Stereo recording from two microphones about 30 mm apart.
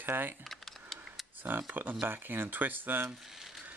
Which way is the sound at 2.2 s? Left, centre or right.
Right.